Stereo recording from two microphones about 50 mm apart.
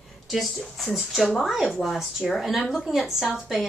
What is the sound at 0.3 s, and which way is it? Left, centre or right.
A woman's voice, centre.